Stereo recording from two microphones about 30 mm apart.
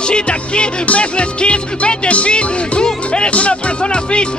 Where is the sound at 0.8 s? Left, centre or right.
Left.